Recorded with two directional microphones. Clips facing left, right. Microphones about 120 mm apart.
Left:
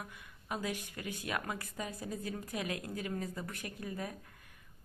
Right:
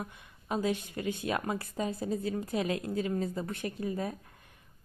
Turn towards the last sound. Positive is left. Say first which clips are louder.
# right 7 dB
turn(degrees=-25)  # may be behind; listen again after turning